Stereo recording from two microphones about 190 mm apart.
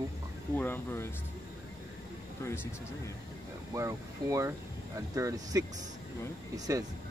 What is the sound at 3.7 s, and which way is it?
Speech, 15° right (ahead or behind).